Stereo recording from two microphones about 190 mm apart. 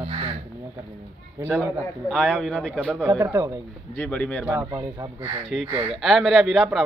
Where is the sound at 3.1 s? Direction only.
20° right (ahead or behind).